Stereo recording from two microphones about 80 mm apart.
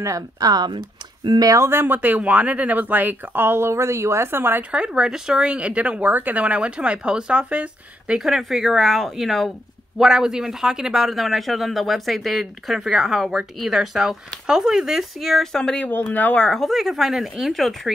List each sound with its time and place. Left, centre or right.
0.0 s speech: right
0.5 s speech: right
1.6 s speech: right
8.2 s a man's voice: centre
15.9 s speech: left
16.4 s a man's voice: centre